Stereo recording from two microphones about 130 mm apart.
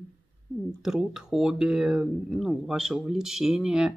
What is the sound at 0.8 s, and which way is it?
Speech, 5° right (ahead or behind).